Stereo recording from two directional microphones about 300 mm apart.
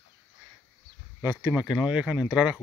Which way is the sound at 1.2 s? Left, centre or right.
Centre.